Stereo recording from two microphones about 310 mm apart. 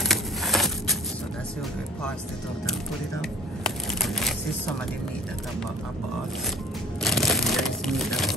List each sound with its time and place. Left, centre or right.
0.0 s a sound: centre
3.2 s shuffling cards: centre
7.0 s crumpling: centre